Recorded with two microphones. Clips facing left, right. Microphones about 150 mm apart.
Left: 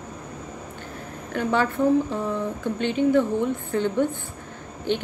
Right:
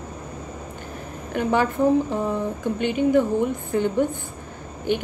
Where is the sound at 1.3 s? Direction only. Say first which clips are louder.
Right 2 dB; 15° right (ahead or behind).